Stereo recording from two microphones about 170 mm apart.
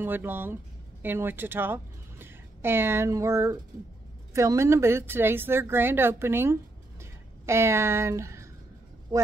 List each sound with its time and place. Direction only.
0.0 s a woman's voice: 10° right (ahead or behind)